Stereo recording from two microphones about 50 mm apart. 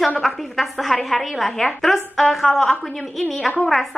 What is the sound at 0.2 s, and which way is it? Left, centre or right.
A woman's voice, centre.